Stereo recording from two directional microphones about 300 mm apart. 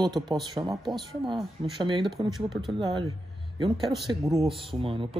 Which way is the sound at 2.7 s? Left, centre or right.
Centre.